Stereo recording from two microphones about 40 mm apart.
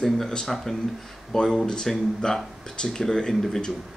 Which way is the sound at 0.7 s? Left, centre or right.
Centre.